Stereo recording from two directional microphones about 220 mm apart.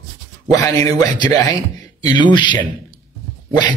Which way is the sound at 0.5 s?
15° left (ahead or behind).